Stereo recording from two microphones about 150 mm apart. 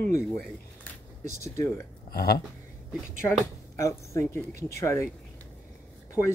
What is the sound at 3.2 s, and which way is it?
Speech, 20° left (ahead or behind).